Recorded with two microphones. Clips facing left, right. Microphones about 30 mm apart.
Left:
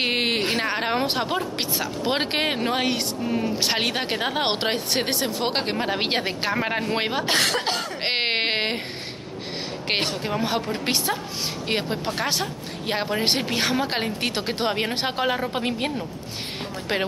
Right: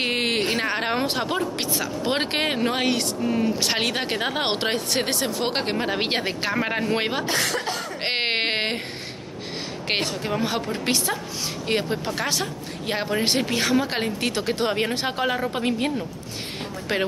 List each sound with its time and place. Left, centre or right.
0.0 s a sound: centre
1.0 s speech: centre
7.2 s speech: left
8.0 s a sound: centre
10.2 s speech: centre
14.3 s speech: left
14.7 s speech: centre
15.2 s speech: centre